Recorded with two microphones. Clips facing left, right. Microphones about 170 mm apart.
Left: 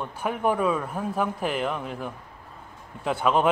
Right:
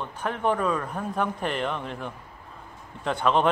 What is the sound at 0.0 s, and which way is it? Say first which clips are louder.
A man's voice: left 1 dB; 10° left (ahead or behind).